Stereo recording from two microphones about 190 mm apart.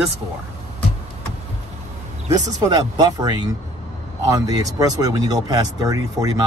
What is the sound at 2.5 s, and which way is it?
Speech, 20° right (ahead or behind).